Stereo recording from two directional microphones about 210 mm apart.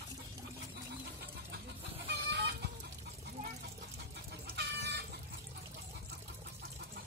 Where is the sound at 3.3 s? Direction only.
40° right (ahead or behind).